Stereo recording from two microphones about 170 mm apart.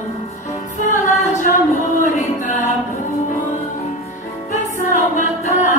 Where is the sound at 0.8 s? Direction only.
45° left (ahead or behind).